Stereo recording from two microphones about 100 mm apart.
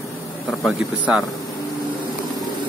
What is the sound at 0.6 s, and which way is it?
Speech, 5° right (ahead or behind).